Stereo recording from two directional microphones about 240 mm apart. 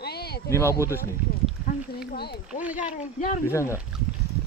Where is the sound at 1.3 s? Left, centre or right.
Left.